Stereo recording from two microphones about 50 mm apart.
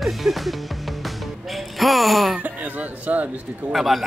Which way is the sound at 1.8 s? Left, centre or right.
Centre.